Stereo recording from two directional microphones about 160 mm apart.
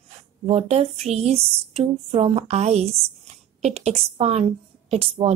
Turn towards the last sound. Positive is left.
turn(degrees=-40)  # may be behind; listen again after turning